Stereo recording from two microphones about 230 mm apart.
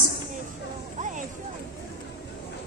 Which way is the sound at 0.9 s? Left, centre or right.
Right.